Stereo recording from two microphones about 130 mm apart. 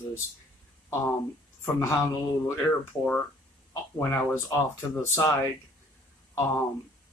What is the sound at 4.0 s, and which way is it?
Speech, 25° left (ahead or behind).